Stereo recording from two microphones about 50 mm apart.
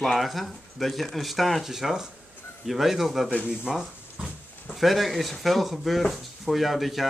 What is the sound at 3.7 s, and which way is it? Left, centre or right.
Speech, centre.